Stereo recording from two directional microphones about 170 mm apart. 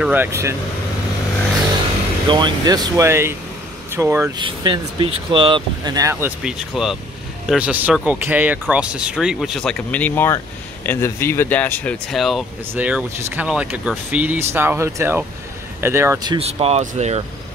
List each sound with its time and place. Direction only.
0.0 s speech: 10° right (ahead or behind)
2.3 s speech: 25° right (ahead or behind)
4.4 s speech: 30° right (ahead or behind)
6.4 s speech: centre (ahead or behind); by 16.3 s 20° right (ahead or behind)
16.3 s speech: 35° right (ahead or behind)